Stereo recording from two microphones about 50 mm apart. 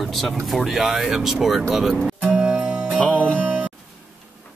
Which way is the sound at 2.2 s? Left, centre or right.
Right.